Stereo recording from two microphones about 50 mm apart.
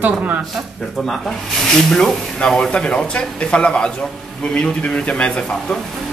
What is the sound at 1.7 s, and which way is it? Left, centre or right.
Speech, centre.